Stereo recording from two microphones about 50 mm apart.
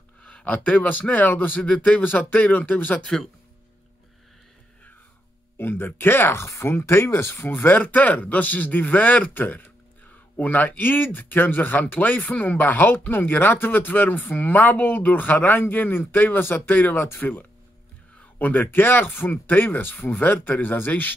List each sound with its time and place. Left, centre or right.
0.2 s a man's voice: left
1.7 s speech: left
5.6 s speech: left
18.4 s speech: left